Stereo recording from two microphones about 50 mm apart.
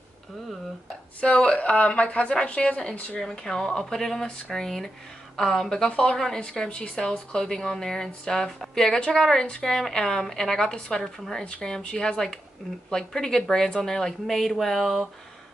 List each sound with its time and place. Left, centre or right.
1.2 s a woman's voice: centre
3.2 s speech: centre
6.1 s speech: centre
6.4 s speech: centre
11.4 s speech: centre